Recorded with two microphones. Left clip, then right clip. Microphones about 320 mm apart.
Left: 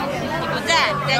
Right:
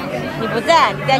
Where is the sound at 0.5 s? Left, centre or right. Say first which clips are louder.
Right 6 dB; centre.